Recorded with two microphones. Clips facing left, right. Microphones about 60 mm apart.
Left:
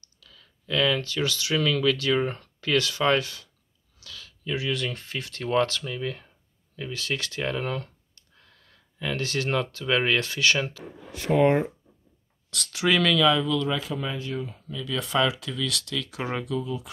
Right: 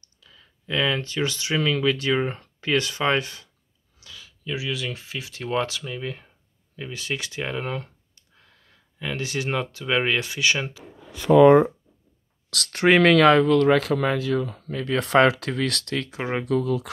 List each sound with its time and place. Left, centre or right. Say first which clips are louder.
0.0 s speech: right 1 dB; right
4.0 s a sound: left 1 dB; centre
4.5 s speech: left 1 dB; centre
12.4 s a sound: right 4 dB; right
12.7 s speech: right 6 dB; right
13.1 s speech: right 6 dB; right
14.7 s speech: right 7 dB; right
16.1 s speech: right 1 dB; right
16.4 s speech: right 7 dB; right